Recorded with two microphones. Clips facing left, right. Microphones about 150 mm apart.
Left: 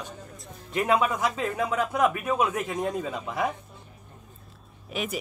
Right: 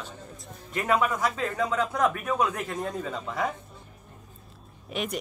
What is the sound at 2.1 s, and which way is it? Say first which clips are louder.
Speech: left 1 dB; 5° left (ahead or behind).